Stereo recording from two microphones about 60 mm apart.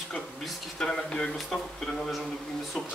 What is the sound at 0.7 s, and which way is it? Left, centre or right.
Speech, centre.